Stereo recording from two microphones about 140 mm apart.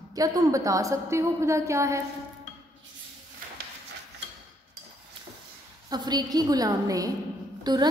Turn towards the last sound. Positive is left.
turn(degrees=-30)  # may be behind; listen again after turning